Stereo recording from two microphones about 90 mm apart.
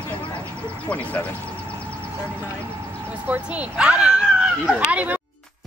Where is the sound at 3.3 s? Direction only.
15° right (ahead or behind).